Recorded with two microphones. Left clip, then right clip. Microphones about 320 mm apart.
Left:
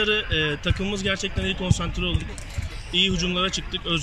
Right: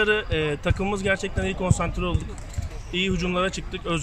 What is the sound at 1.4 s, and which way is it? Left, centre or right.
Speech, right.